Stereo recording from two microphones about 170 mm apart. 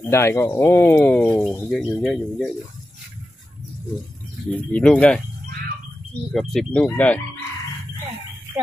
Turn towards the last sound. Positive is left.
turn(degrees=10)  # may be behind; listen again after turning